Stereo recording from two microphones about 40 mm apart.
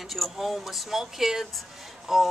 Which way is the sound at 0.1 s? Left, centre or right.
Centre.